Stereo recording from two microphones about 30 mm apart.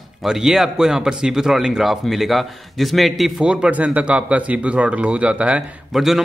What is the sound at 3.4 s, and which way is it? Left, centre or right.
Speech, right.